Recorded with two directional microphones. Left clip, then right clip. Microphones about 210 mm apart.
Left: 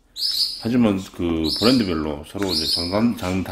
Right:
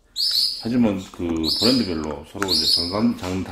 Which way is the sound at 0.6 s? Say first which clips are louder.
Left 2 dB; 40° left (ahead or behind).